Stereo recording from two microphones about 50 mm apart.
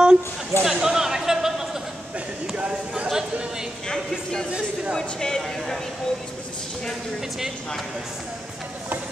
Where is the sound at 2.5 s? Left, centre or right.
Right.